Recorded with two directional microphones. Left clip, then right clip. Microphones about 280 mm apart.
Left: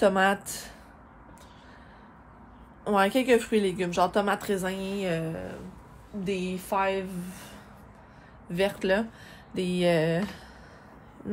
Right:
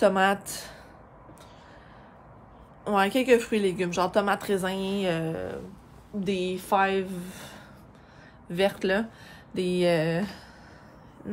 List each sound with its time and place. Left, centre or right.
0.0 s a woman's voice: centre
2.8 s a woman's voice: centre